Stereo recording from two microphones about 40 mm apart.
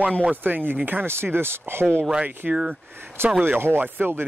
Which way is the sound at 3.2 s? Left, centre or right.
Right.